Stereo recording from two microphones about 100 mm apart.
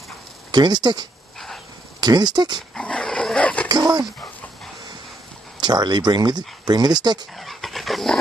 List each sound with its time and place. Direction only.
0.5 s speech: 45° right (ahead or behind)
2.7 s dog: 10° left (ahead or behind)
3.6 s dog: 45° right (ahead or behind)
5.6 s speech: 45° right (ahead or behind)
7.3 s dog: centre (ahead or behind)